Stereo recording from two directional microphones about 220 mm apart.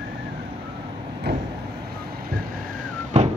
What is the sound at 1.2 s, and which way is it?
Vehicle, 50° right (ahead or behind).